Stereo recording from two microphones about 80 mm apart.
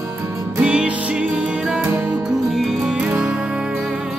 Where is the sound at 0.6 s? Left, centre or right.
Centre.